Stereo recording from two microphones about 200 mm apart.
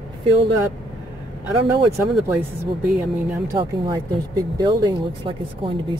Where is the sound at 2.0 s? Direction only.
15° right (ahead or behind).